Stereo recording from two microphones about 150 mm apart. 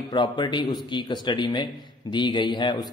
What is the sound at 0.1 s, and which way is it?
A man's voice, 30° left (ahead or behind).